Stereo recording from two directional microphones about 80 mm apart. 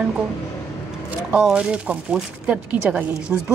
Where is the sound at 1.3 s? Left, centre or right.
Centre.